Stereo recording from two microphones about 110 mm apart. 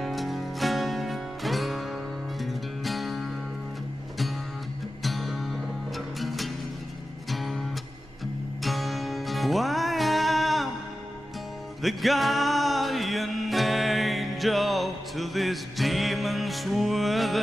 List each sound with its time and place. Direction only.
0.0 s music: centre (ahead or behind)
5.0 s music: centre (ahead or behind)
8.6 s music: centre (ahead or behind)
11.8 s music: centre (ahead or behind)